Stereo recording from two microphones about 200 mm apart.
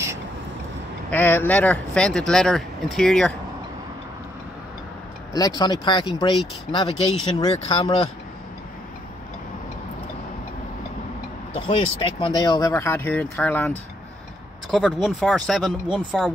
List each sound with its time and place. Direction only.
1.1 s speech: 10° left (ahead or behind)
5.6 s speech: 20° left (ahead or behind)
11.5 s speech: 25° left (ahead or behind); by 16.3 s centre (ahead or behind)